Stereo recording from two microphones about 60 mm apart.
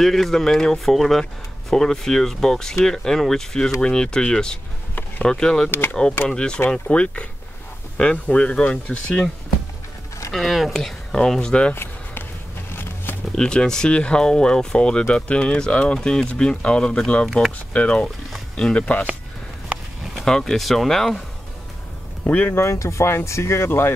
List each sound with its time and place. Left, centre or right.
0.0 s speech: centre
5.7 s speech: left
6.2 s speech: centre
10.3 s speech: centre
11.7 s basketball bounce: left
13.3 s speech: centre
20.2 s speech: centre
22.2 s speech: left
22.5 s speech: left